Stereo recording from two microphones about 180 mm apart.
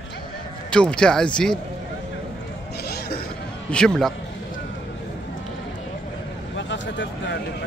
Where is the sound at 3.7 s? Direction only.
5° left (ahead or behind).